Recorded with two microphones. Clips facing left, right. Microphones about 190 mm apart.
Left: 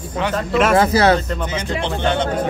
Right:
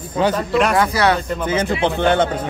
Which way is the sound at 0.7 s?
25° left (ahead or behind).